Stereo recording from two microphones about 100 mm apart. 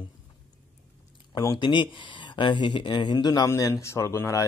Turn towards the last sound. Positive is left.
turn(degrees=30)  # may be behind; listen again after turning